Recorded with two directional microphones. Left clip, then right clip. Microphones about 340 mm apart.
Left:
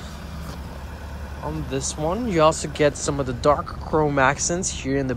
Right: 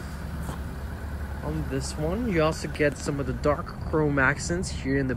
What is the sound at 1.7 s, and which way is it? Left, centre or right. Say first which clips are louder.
Speech: left 6 dB; centre.